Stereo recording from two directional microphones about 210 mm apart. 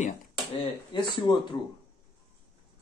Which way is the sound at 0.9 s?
20° left (ahead or behind).